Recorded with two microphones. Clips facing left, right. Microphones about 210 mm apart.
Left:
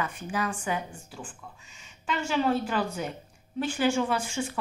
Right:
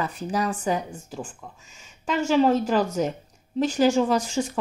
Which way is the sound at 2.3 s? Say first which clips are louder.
Right 7 dB; 40° right (ahead or behind).